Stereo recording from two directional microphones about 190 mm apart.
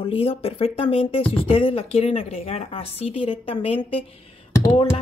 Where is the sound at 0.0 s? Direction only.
30° left (ahead or behind).